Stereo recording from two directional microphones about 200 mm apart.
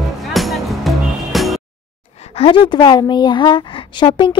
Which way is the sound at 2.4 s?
25° left (ahead or behind).